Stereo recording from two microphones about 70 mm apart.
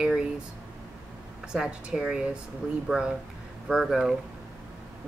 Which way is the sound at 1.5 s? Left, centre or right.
Centre.